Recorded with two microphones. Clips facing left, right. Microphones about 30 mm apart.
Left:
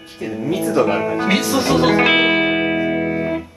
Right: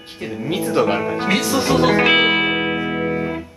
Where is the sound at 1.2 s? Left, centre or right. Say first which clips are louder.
Even; centre.